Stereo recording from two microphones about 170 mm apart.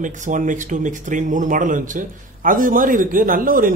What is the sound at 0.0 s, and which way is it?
Speech, 50° right (ahead or behind).